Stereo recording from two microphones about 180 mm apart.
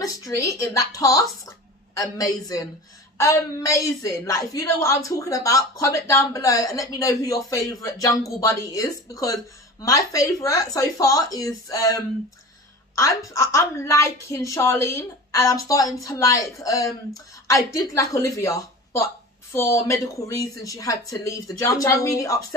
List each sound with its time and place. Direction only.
0.0 s a woman's voice: 20° left (ahead or behind)